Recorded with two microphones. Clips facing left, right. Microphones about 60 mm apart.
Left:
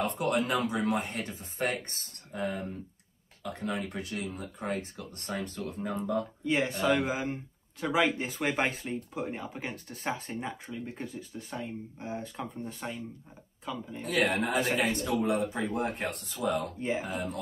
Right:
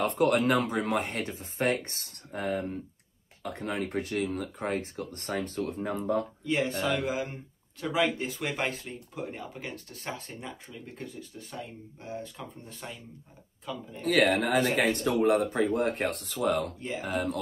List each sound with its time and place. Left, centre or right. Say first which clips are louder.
0.0 s speech: right 4 dB; right
1.2 s speech: right 3 dB; right
6.4 s speech: left 1 dB; centre
14.0 s speech: right 4 dB; right